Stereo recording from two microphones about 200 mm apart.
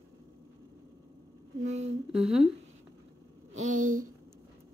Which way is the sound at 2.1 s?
5° right (ahead or behind).